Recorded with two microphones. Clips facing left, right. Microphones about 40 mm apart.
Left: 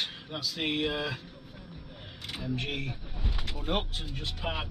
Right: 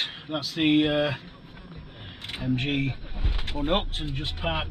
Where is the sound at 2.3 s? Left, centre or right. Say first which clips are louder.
Right 7 dB; right.